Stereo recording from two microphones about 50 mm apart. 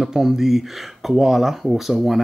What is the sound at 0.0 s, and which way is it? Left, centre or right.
Speech, centre.